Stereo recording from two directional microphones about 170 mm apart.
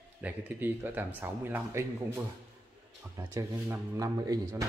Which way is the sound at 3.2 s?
20° right (ahead or behind).